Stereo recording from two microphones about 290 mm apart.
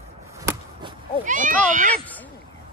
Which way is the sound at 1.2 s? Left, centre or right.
Right.